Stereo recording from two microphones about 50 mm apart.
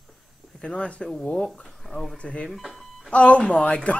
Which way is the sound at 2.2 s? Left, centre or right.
Left.